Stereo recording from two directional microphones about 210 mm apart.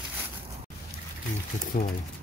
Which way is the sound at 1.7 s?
40° left (ahead or behind).